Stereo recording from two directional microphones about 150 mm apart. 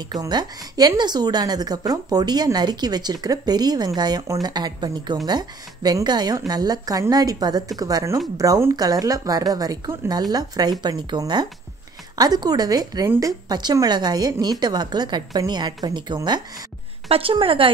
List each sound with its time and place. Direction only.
0.1 s a woman's voice: 25° right (ahead or behind)